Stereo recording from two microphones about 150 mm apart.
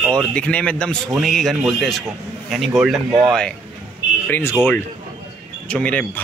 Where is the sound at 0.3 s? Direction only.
10° left (ahead or behind).